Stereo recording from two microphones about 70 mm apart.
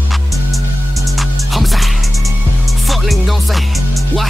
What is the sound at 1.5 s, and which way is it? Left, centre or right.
Music, centre.